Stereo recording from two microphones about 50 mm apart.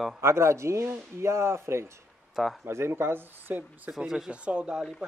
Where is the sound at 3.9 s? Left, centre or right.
Centre.